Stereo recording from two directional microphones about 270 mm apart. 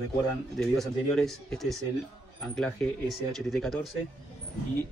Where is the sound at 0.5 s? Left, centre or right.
Centre.